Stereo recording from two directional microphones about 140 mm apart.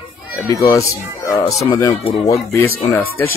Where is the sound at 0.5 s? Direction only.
20° left (ahead or behind).